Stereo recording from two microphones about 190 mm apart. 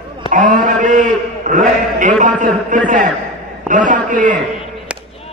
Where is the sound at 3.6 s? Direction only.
45° right (ahead or behind).